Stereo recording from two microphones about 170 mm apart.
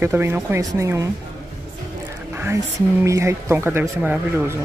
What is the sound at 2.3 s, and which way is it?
Speech, 15° right (ahead or behind).